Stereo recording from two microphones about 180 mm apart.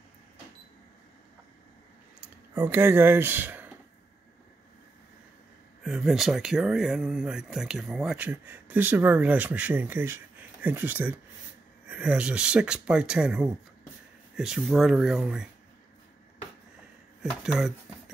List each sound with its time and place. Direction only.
2.5 s speech: 10° right (ahead or behind)
5.9 s speech: centre (ahead or behind)
17.2 s speech: 5° right (ahead or behind)